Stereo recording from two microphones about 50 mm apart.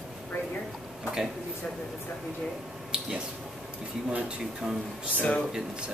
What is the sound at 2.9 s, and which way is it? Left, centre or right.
Speech, centre.